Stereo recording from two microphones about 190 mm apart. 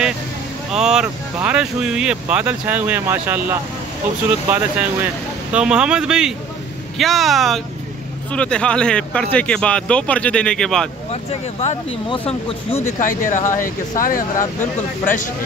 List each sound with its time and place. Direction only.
0.7 s speech: 5° right (ahead or behind)
11.6 s speech: 30° left (ahead or behind)
12.8 s speech: 45° left (ahead or behind)